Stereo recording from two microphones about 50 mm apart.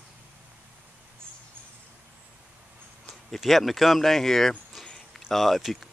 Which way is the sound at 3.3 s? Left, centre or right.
Centre.